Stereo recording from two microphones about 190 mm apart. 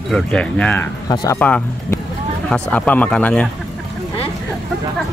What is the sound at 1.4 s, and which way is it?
Speech, 5° left (ahead or behind).